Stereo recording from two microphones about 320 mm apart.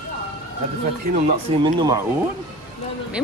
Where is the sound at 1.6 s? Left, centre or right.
Centre.